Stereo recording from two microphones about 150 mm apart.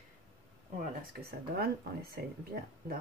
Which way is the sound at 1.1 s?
85° right.